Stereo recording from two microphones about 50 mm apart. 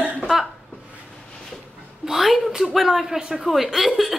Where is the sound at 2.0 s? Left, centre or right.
Centre.